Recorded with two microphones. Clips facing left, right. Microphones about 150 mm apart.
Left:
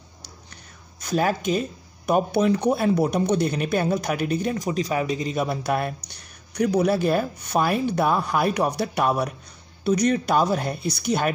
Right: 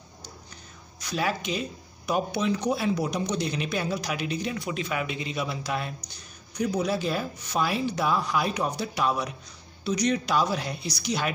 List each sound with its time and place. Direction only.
1.0 s speech: 45° left (ahead or behind)